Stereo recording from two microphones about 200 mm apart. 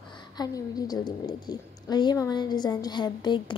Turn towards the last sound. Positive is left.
turn(degrees=20)  # may be behind; listen again after turning